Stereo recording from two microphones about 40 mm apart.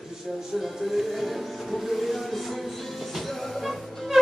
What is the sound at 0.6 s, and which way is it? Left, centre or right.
Music, centre.